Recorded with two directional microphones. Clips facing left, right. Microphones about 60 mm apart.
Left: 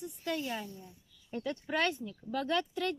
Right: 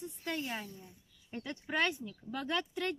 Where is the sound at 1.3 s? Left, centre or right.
Centre.